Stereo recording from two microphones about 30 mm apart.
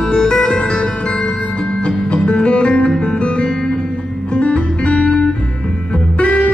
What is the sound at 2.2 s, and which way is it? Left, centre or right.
Music, left.